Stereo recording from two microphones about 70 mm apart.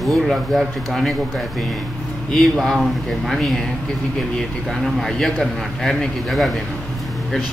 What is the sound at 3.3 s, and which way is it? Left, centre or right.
Speech, centre.